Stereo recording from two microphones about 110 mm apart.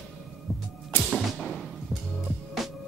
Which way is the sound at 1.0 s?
Centre (ahead or behind).